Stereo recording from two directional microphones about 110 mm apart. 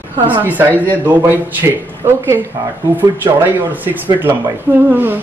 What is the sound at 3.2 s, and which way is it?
A man's voice, 20° right (ahead or behind).